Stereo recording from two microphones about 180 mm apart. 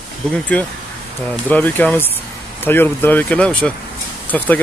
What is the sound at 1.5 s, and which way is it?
Speech, 10° left (ahead or behind).